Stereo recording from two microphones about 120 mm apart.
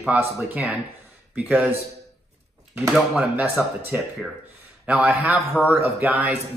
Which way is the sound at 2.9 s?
5° right (ahead or behind).